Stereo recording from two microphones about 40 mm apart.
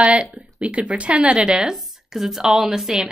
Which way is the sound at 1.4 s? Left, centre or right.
Centre.